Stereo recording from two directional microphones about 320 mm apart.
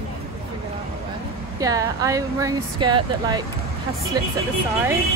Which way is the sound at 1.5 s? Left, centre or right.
Centre.